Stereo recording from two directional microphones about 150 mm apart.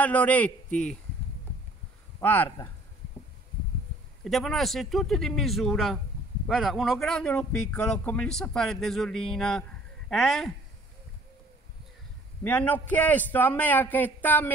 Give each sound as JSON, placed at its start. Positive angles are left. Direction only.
{"t": 0.0, "sound": "a man's voice", "side_deg": 10}
{"t": 2.1, "sound": "a man's voice", "side_deg": 10}
{"t": 4.2, "sound": "speech", "side_deg": 0}
{"t": 12.4, "sound": "a man's voice", "side_deg": 10}